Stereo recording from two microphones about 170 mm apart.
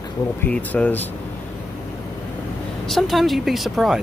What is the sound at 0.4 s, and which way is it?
Speech, 10° left (ahead or behind).